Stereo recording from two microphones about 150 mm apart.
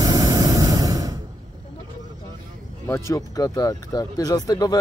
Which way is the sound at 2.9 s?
20° left (ahead or behind).